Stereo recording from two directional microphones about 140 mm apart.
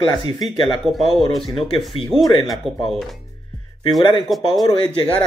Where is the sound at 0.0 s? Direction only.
35° left (ahead or behind).